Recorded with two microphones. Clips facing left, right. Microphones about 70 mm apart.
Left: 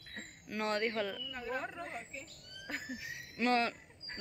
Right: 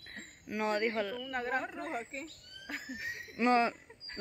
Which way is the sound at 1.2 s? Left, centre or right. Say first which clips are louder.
Right 5 dB; right.